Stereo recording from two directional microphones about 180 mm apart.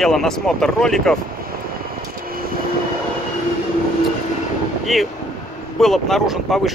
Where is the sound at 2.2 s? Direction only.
55° right (ahead or behind).